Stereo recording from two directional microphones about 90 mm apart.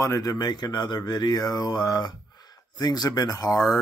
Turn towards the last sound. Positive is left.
turn(degrees=45)  # may be behind; listen again after turning